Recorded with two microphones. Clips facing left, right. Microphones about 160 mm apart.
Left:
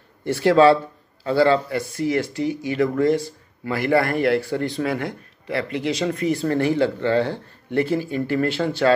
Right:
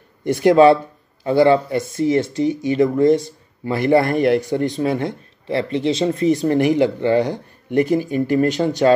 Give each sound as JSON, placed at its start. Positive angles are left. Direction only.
{"t": 0.2, "sound": "speech", "side_deg": -15}